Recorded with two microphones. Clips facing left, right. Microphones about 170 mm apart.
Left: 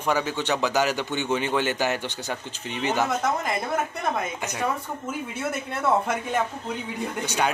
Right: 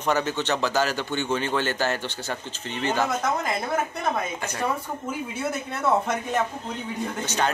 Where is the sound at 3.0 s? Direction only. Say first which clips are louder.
Even; centre (ahead or behind).